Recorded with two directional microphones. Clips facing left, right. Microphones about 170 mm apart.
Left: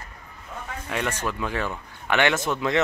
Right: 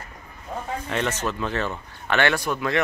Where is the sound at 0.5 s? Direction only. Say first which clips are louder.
Right 6 dB; 35° right (ahead or behind).